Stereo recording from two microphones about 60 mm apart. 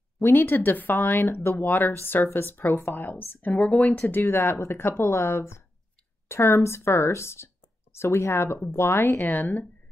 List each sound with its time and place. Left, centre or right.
0.2 s speech: left
3.5 s speech: left
4.1 s speech: left
9.2 s speech: left